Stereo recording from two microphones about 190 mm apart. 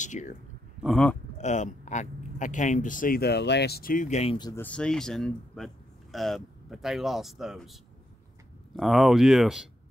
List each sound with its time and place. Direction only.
0.0 s speech: 40° left (ahead or behind)
0.8 s speech: 5° left (ahead or behind)
1.4 s speech: 40° left (ahead or behind)
4.4 s speech: 20° left (ahead or behind)
4.6 s speech: 5° left (ahead or behind)
8.7 s speech: centre (ahead or behind)